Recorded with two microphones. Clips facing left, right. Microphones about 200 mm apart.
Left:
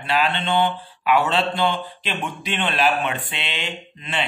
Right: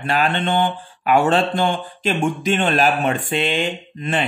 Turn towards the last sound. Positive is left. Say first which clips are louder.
# right 5 dB
turn(degrees=-50)  # may be behind; listen again after turning